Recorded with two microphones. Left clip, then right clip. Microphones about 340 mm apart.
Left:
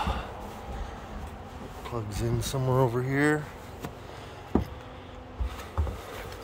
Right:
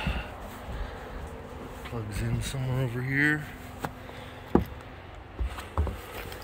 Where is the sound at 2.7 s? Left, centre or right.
Left.